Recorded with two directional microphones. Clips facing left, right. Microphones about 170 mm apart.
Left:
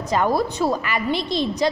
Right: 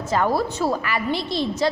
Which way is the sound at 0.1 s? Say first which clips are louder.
Left 1 dB; 15° left (ahead or behind).